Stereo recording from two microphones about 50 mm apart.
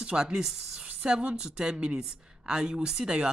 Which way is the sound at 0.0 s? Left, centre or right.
Centre.